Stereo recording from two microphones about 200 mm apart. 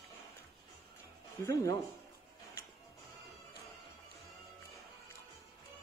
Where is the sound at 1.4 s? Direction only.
15° left (ahead or behind).